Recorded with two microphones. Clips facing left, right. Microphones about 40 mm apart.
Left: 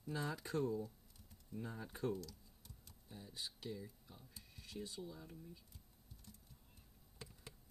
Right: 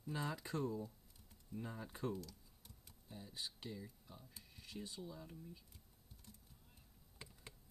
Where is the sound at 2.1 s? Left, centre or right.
Right.